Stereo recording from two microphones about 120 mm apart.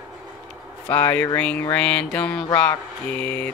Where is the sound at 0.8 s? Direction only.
15° left (ahead or behind).